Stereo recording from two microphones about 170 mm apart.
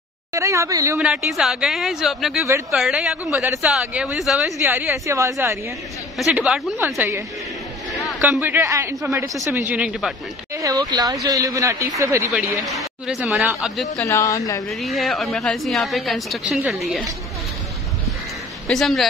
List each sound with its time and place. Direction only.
0.3 s speech: 20° right (ahead or behind)
0.9 s a woman's voice: 5° right (ahead or behind)
4.6 s a man's voice: 10° right (ahead or behind)
6.1 s a man's voice: 5° right (ahead or behind)
7.9 s a man's voice: centre (ahead or behind)
10.5 s a man's voice: 20° right (ahead or behind)
12.6 s a woman's voice: centre (ahead or behind)
14.0 s speech: 20° left (ahead or behind)
14.7 s a woman's voice: centre (ahead or behind)
18.7 s a woman's voice: centre (ahead or behind)